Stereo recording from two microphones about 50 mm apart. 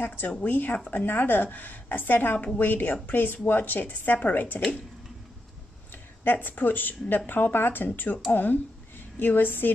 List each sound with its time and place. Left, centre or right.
0.0 s a woman's voice: left
6.2 s a woman's voice: left